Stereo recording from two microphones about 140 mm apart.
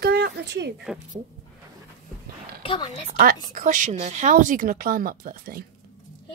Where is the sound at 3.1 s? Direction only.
90° right.